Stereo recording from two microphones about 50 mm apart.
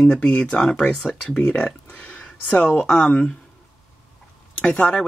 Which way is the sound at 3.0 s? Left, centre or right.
Left.